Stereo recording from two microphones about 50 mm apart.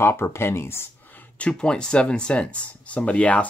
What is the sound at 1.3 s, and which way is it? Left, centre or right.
Speech, left.